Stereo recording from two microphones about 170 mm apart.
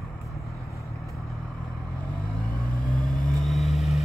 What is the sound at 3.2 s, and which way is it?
Vehicle, centre (ahead or behind).